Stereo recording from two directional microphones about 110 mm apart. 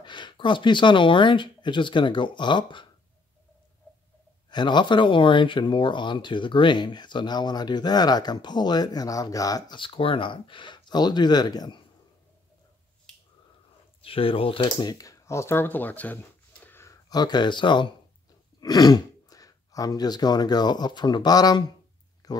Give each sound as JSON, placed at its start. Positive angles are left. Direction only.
{"t": 0.0, "sound": "speech", "side_deg": 45}
{"t": 4.5, "sound": "speech", "side_deg": 45}
{"t": 9.8, "sound": "speech", "side_deg": 55}
{"t": 14.0, "sound": "speech", "side_deg": 55}
{"t": 16.6, "sound": "a sound", "side_deg": 25}
{"t": 17.1, "sound": "speech", "side_deg": 40}
{"t": 22.2, "sound": "a sound", "side_deg": 35}